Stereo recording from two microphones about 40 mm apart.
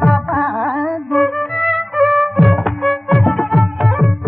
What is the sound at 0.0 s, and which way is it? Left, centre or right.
Music, centre.